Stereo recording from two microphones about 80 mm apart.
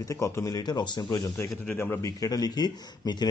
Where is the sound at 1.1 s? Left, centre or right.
Left.